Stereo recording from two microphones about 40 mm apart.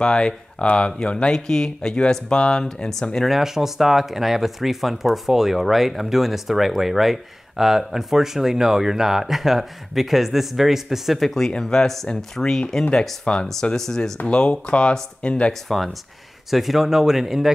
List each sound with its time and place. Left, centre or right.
0.0 s speech: left
3.3 s speech: centre
11.1 s speech: centre; by 15.5 s left
16.4 s speech: centre